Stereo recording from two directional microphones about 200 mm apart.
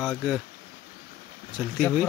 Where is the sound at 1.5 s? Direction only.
Centre (ahead or behind).